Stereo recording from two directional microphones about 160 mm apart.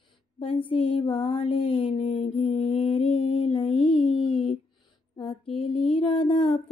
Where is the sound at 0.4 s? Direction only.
35° left (ahead or behind).